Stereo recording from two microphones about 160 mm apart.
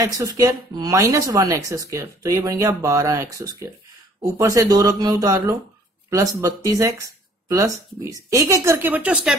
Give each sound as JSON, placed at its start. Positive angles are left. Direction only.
{"t": 0.0, "sound": "speech", "side_deg": -20}